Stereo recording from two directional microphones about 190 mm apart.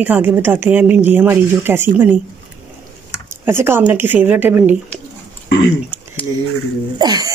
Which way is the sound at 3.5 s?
15° right (ahead or behind).